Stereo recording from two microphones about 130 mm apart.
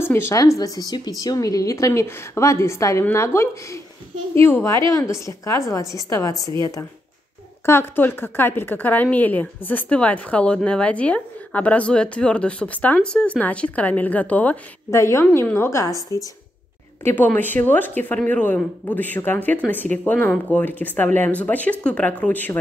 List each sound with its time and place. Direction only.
0.0 s a woman's voice: 20° left (ahead or behind)
17.0 s a woman's voice: 15° left (ahead or behind)